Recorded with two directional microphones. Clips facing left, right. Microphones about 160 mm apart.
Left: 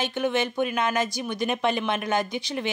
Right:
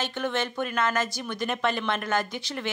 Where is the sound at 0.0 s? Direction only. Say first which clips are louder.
Left 4 dB; 15° left (ahead or behind).